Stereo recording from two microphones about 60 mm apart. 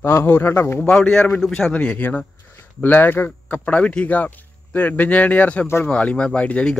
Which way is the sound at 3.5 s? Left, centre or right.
Left.